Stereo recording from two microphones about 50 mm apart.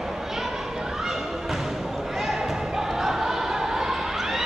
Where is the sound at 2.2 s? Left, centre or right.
Centre.